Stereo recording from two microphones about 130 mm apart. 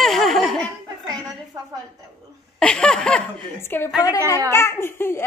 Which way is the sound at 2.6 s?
5° left (ahead or behind).